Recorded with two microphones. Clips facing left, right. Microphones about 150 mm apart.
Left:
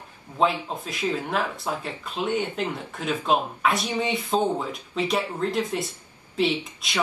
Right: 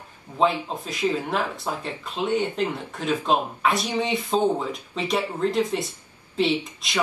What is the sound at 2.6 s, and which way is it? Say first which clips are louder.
Speech: right 2 dB; centre (ahead or behind).